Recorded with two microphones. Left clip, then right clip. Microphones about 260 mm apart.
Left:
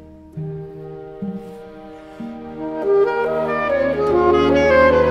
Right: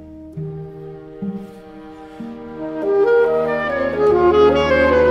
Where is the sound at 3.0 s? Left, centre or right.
Right.